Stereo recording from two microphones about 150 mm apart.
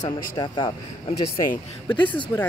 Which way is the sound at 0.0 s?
30° left (ahead or behind).